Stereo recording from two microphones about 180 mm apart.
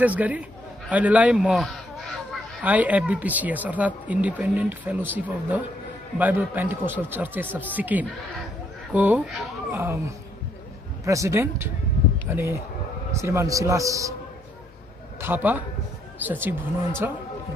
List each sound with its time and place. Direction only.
0.0 s a man's voice: 10° right (ahead or behind)
15.1 s speech: 10° right (ahead or behind)